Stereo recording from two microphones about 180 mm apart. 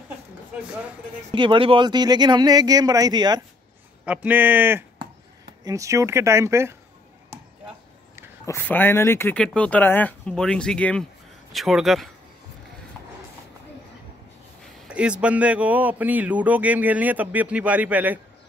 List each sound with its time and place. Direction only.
1.3 s speech: 25° right (ahead or behind)
4.0 s speech: 5° right (ahead or behind)
8.5 s speech: 10° left (ahead or behind)
14.9 s speech: 5° right (ahead or behind)